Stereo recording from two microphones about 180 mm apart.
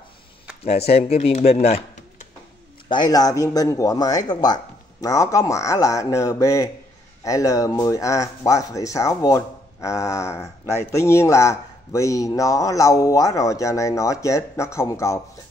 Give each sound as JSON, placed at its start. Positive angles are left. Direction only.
{"t": 0.7, "sound": "speech", "side_deg": 35}
{"t": 2.9, "sound": "a man's voice", "side_deg": 20}